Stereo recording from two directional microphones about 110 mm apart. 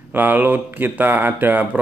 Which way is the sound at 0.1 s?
15° right (ahead or behind).